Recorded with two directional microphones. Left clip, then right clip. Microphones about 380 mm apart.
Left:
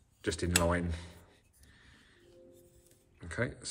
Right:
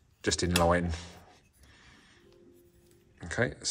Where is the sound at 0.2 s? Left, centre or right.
Centre.